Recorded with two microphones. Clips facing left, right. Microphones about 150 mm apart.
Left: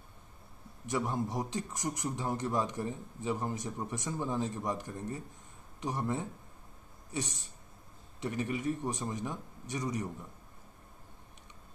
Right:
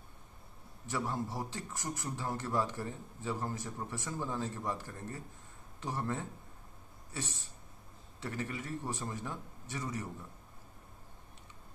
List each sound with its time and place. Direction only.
0.8 s a man's voice: 20° left (ahead or behind)